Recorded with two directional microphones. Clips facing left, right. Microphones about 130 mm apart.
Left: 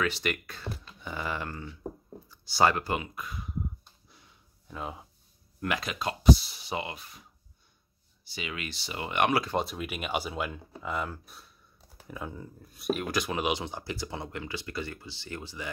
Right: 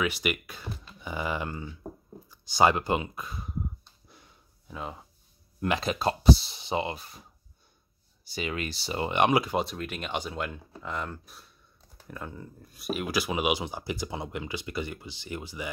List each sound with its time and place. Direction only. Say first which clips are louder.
0.0 s speech: right 1 dB; 10° right (ahead or behind); by 3.5 s 30° right (ahead or behind)
4.6 s speech: even; centre (ahead or behind)
5.6 s speech: right 4 dB; 25° right (ahead or behind)
8.3 s speech: right 5 dB; 40° right (ahead or behind); by 9.6 s 15° right (ahead or behind)
9.6 s speech: right 1 dB; 5° left (ahead or behind); by 15.7 s 15° right (ahead or behind)